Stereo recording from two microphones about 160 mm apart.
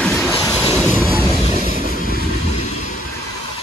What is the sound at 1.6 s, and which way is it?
Vehicle, 70° right (ahead or behind).